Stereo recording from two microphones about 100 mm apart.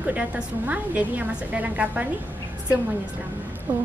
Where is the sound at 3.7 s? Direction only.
15° right (ahead or behind).